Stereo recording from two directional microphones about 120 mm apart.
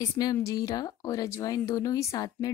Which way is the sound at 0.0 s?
35° left (ahead or behind).